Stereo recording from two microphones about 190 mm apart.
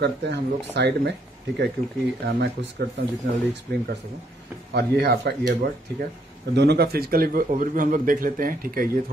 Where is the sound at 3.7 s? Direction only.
60° right (ahead or behind).